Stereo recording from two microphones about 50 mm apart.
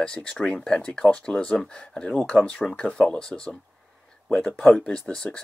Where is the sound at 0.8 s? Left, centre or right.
Left.